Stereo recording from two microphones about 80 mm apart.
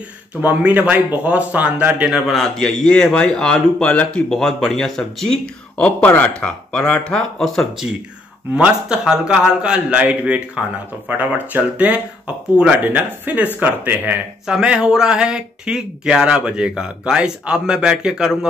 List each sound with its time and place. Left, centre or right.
0.4 s speech: centre
2.3 s speech: centre
8.5 s speech: centre
14.4 s speech: centre